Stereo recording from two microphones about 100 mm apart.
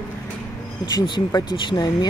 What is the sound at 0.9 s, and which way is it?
Speech, 45° left (ahead or behind).